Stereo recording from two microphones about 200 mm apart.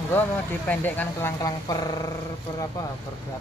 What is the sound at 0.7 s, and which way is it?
Speech, 10° left (ahead or behind).